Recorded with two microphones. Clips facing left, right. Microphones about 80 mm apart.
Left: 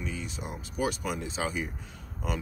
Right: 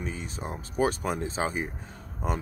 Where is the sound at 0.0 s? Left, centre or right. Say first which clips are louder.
Right 2 dB; right.